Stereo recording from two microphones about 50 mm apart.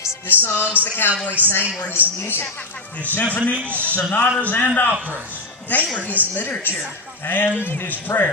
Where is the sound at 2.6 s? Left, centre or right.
Left.